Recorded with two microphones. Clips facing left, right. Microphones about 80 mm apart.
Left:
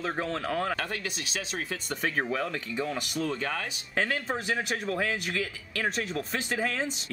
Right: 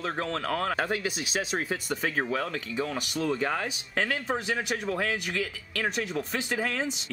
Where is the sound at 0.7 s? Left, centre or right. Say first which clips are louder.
Right 5 dB; centre.